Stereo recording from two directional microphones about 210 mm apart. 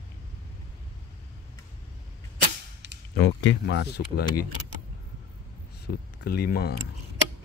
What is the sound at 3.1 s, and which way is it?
Speech, 55° left (ahead or behind).